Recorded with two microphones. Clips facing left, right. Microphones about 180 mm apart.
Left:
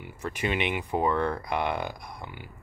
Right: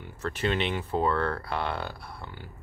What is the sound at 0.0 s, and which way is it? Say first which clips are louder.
Speech: right 1 dB; 10° left (ahead or behind).